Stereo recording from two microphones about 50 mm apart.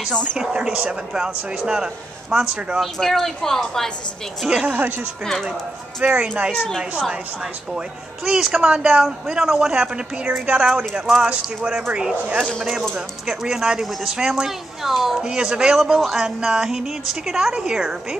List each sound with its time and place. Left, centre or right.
0.4 s speech: centre
2.8 s a woman's voice: centre
4.5 s speech: centre
4.7 s speech: right
6.1 s speech: right
8.3 s speech: centre
12.9 s speech: centre
15.2 s speech: centre